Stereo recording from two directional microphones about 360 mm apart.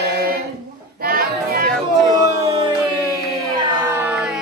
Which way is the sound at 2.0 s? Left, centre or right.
Centre.